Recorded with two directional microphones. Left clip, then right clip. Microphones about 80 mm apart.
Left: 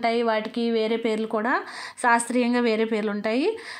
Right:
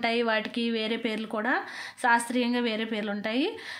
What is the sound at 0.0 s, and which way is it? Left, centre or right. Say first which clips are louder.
A woman's voice: left 3 dB; centre.